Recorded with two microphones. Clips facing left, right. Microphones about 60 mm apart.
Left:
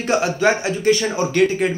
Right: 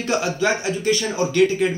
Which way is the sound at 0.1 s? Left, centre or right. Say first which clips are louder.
Left 4 dB; left.